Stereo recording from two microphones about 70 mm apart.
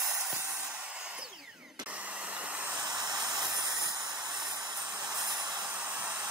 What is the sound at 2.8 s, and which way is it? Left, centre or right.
Hiss, right.